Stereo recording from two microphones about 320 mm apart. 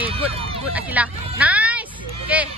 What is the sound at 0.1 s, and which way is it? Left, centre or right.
Speech, centre.